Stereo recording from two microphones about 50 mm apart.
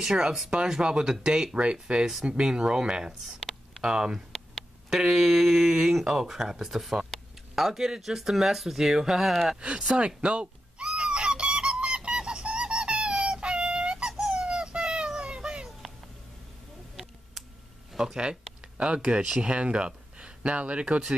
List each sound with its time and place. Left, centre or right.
0.0 s speech: centre
3.3 s a sound: centre
3.8 s speech: centre
9.6 s speech: right
9.8 s a sound: right
17.9 s speech: centre